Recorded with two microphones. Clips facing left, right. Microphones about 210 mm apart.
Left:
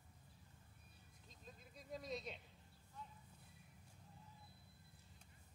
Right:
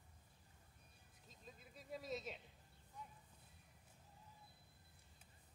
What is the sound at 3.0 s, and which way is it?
Clip-clop, 10° right (ahead or behind).